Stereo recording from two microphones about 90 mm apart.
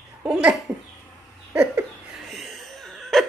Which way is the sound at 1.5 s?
15° right (ahead or behind).